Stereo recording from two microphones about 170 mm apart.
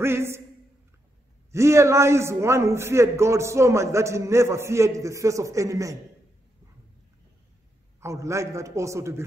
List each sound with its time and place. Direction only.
0.0 s a man's voice: 15° right (ahead or behind)
1.5 s a man's voice: 15° right (ahead or behind)
8.0 s a man's voice: 15° right (ahead or behind)